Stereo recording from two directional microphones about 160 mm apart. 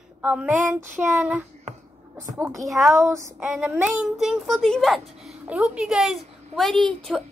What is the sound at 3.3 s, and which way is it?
Speech, 5° right (ahead or behind).